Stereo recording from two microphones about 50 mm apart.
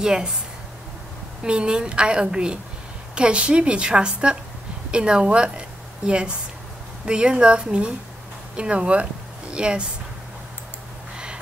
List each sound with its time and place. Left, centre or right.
0.0 s speech: centre
1.4 s a woman's voice: centre